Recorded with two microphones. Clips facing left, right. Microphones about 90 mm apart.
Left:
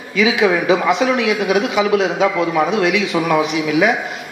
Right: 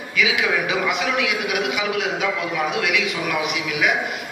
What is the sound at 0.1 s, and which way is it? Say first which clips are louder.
A man's voice: left 7 dB; 35° left (ahead or behind).